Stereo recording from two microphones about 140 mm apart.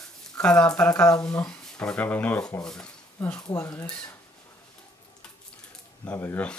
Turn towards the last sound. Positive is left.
turn(degrees=10)  # may be behind; listen again after turning